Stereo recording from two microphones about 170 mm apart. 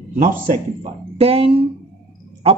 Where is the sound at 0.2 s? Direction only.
50° right (ahead or behind).